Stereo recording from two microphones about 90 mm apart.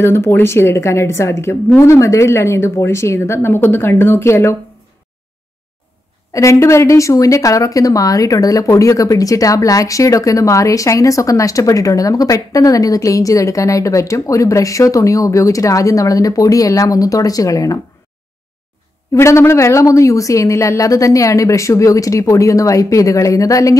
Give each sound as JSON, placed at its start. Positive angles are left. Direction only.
{"t": 0.0, "sound": "a woman's voice", "side_deg": 25}
{"t": 6.3, "sound": "speech", "side_deg": 35}
{"t": 19.1, "sound": "speech", "side_deg": 30}